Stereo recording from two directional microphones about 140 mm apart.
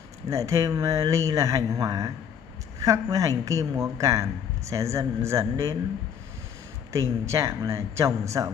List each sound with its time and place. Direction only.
0.3 s a man's voice: 20° right (ahead or behind)
6.9 s a man's voice: 20° right (ahead or behind)